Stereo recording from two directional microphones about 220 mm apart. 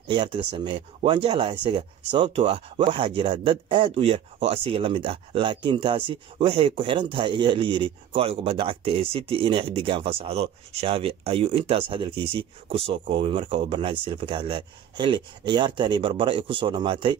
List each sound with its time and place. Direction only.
0.1 s speech: 20° right (ahead or behind)